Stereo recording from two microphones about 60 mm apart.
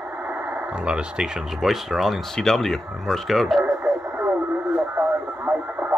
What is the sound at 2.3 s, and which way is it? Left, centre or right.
Speech, centre.